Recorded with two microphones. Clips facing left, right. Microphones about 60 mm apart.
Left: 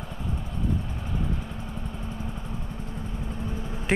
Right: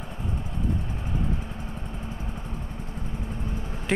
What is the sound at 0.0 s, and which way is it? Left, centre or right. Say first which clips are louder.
Vehicle: even; centre.